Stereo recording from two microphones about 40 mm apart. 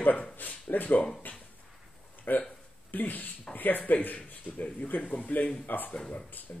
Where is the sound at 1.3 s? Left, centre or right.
Left.